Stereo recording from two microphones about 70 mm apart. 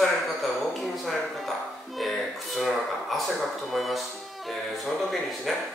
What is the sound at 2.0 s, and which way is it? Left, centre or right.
Speech, centre.